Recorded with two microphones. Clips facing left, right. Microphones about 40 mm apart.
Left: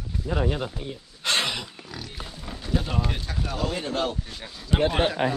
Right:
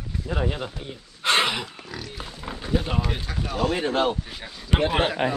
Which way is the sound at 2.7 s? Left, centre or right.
Centre.